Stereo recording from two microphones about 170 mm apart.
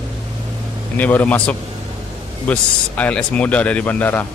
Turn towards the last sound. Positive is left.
turn(degrees=10)  # may be behind; listen again after turning